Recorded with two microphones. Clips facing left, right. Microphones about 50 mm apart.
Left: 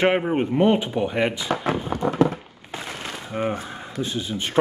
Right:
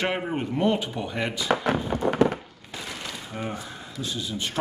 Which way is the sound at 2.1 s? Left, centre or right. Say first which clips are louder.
Left 1 dB; right.